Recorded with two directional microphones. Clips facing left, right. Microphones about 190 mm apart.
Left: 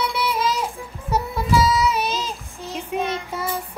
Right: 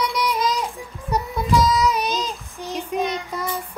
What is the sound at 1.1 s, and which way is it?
Music, 5° left (ahead or behind).